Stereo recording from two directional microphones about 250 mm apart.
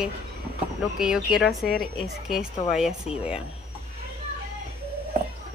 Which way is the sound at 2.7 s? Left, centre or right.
Centre.